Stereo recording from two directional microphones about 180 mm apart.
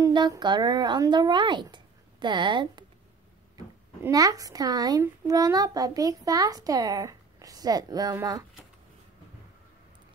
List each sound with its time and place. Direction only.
0.0 s speech: 20° right (ahead or behind)